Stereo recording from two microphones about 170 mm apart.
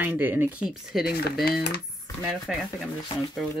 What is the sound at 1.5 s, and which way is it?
Speech, 70° left (ahead or behind).